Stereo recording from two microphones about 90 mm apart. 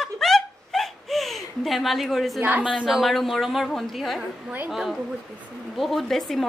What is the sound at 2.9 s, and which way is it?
A woman's voice, centre (ahead or behind).